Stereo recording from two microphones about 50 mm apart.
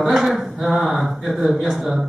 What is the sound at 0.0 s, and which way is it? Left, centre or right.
A man's voice, centre.